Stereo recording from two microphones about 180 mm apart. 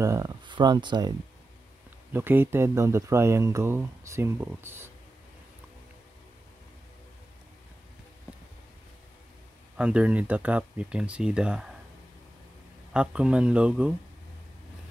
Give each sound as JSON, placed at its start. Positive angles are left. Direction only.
{"t": 0.0, "sound": "speech", "side_deg": -15}
{"t": 2.1, "sound": "speech", "side_deg": -10}
{"t": 9.8, "sound": "speech", "side_deg": -5}
{"t": 12.9, "sound": "speech", "side_deg": -5}